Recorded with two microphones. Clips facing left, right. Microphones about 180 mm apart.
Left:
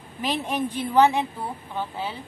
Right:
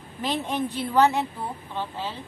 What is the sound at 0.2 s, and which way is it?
A woman's voice, 10° left (ahead or behind).